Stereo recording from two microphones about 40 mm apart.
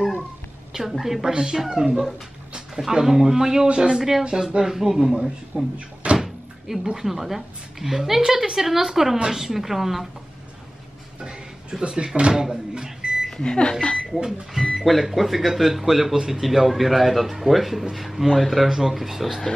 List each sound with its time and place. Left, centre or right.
1.0 s speech: centre
3.6 s speech: right
5.5 s speech: right
6.1 s speech: centre
11.7 s speech: centre
13.4 s speech: left
14.2 s speech: centre